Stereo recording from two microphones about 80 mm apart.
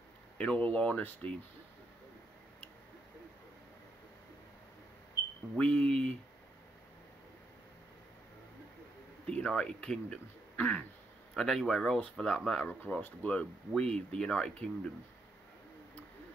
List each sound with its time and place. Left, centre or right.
0.4 s speech: centre
5.6 s speech: centre
9.2 s speech: centre
11.3 s speech: centre
12.6 s speech: left